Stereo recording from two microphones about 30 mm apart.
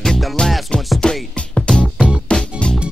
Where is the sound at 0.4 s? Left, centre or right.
Left.